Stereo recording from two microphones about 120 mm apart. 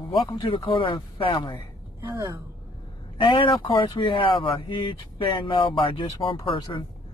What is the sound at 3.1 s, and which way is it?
Speech, 45° left (ahead or behind).